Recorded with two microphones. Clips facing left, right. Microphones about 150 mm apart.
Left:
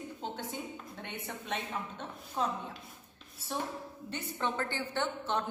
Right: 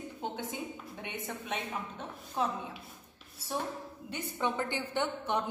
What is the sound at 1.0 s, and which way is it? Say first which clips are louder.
A woman's voice: right 3 dB; 10° right (ahead or behind).